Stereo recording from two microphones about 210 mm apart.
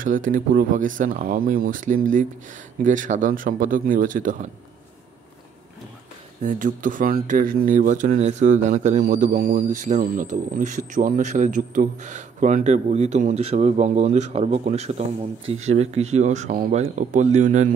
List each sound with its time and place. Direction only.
0.0 s speech: 40° right (ahead or behind)
6.4 s speech: 40° right (ahead or behind)